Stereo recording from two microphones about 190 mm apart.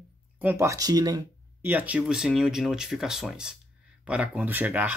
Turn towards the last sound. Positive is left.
turn(degrees=-10)  # may be behind; listen again after turning